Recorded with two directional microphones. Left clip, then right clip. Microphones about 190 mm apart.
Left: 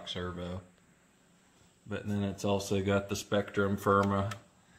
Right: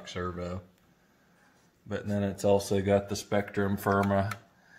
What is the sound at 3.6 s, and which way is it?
Speech, 10° right (ahead or behind).